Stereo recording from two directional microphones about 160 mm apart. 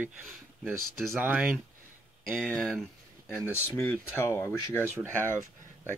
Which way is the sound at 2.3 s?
5° left (ahead or behind).